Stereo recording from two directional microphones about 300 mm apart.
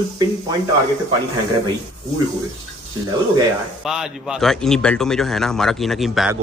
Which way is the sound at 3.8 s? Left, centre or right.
Centre.